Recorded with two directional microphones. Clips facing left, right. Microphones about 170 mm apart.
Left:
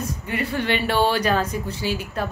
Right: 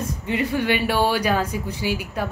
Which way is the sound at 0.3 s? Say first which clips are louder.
Right 2 dB; 15° right (ahead or behind).